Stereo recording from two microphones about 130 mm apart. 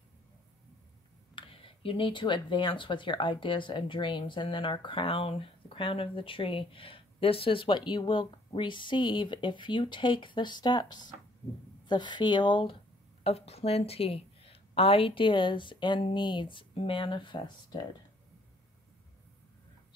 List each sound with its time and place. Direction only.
1.3 s speech: 45° left (ahead or behind)
13.2 s a woman's voice: 50° left (ahead or behind)